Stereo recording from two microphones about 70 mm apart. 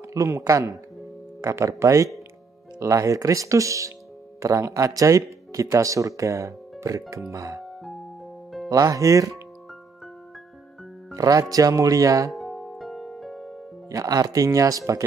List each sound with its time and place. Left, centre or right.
0.1 s speech: right
8.6 s speech: right
11.1 s speech: right
12.3 s music: centre
13.8 s speech: right